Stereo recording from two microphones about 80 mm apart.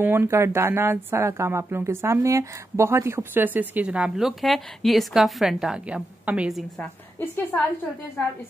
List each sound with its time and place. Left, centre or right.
0.0 s a woman's voice: right
6.8 s a woman's voice: left